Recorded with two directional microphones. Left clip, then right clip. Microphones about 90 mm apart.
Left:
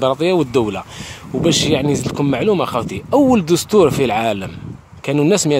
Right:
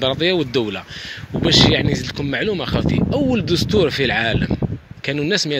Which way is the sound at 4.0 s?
35° left (ahead or behind).